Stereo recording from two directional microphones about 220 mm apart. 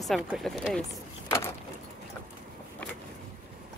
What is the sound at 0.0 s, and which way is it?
Speech, centre (ahead or behind).